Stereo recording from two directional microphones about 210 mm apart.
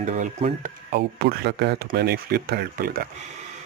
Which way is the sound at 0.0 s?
35° right (ahead or behind).